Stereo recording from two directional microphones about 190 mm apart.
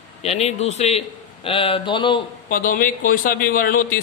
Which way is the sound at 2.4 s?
45° left (ahead or behind).